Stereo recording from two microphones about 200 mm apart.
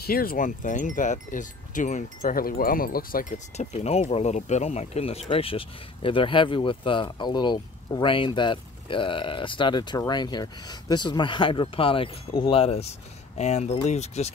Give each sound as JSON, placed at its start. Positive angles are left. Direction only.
{"t": 0.0, "sound": "speech", "side_deg": 50}